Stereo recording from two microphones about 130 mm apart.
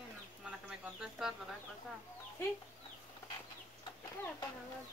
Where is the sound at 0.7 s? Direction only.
5° right (ahead or behind).